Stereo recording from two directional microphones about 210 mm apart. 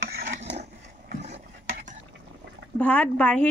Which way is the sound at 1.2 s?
35° right (ahead or behind).